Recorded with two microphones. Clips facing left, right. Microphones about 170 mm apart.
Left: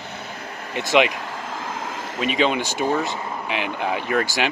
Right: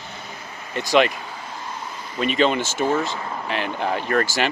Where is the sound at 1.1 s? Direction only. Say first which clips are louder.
Left 4 dB; 85° left.